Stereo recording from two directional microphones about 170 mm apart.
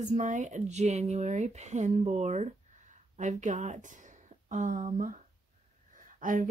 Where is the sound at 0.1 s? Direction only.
45° right (ahead or behind).